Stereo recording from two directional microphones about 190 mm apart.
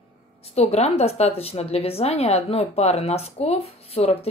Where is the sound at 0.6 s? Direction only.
35° left (ahead or behind).